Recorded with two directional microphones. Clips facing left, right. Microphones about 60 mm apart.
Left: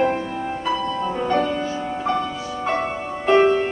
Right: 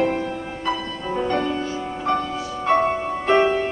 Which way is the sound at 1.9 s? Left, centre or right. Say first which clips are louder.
Right 1 dB; centre.